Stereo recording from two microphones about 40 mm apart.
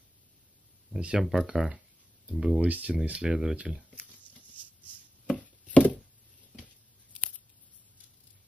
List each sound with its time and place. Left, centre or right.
0.9 s speech: right
1.2 s speech: centre
2.6 s speech: right
5.2 s chopping: left